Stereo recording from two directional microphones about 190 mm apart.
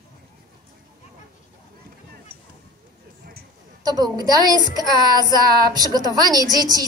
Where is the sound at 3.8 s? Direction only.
20° right (ahead or behind).